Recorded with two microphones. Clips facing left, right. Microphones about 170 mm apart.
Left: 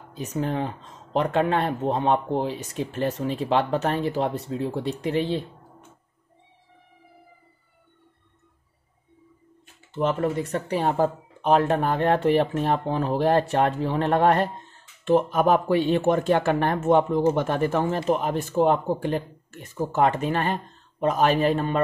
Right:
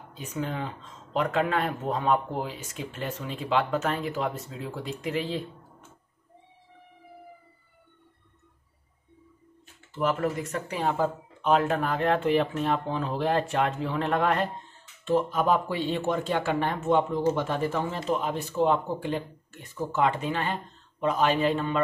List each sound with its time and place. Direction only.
0.2 s speech: 40° left (ahead or behind)
9.9 s speech: 30° left (ahead or behind)
15.0 s speech: 60° left (ahead or behind); by 21.8 s 40° left (ahead or behind)